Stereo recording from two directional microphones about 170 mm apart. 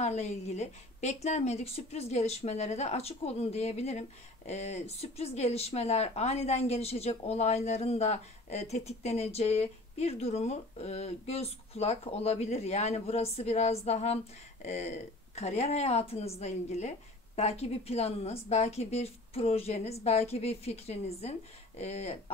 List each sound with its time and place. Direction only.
0.0 s speech: 40° left (ahead or behind)